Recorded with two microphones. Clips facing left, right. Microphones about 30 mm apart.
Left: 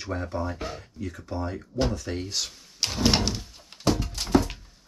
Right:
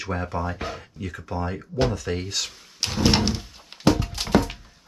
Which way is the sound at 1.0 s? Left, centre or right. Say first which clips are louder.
Right 3 dB; right.